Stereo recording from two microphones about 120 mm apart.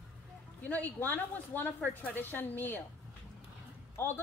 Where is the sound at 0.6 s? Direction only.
15° left (ahead or behind).